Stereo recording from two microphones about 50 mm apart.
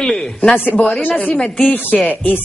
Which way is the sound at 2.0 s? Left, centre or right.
Left.